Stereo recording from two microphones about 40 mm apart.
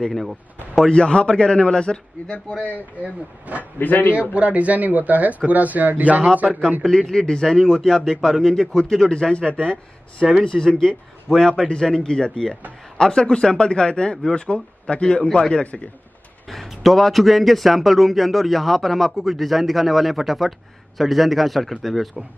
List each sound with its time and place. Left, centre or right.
0.1 s speech: centre
0.8 s a man's voice: left
3.0 s speech: right
3.8 s a man's voice: left
4.1 s speech: right
6.8 s a man's voice: centre
9.1 s a man's voice: left
16.4 s a man's voice: centre